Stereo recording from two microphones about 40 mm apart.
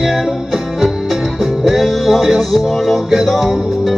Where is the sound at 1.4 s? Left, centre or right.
Centre.